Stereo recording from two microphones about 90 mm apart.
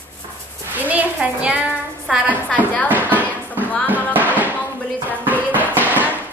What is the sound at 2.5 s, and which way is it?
Music, 15° left (ahead or behind).